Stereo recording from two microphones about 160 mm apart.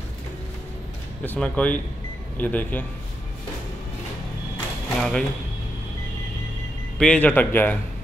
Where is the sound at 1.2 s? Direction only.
10° left (ahead or behind).